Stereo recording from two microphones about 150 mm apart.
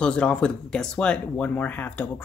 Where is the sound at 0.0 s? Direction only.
5° left (ahead or behind).